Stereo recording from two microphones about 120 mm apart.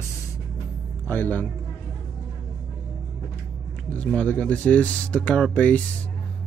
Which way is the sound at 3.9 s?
10° left (ahead or behind).